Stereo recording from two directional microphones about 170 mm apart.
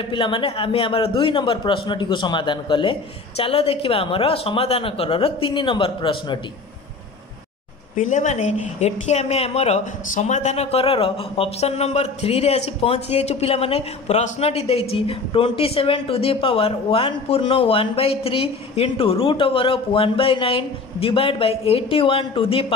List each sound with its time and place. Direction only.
0.0 s speech: 30° left (ahead or behind)
7.9 s speech: 45° left (ahead or behind)